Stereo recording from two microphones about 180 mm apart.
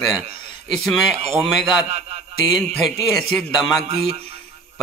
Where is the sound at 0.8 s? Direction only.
Centre (ahead or behind).